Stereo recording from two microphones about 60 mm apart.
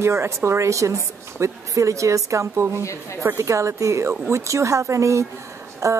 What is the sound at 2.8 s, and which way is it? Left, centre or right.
Speech, left.